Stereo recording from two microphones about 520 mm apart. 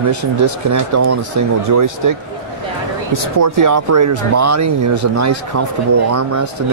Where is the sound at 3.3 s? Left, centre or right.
Right.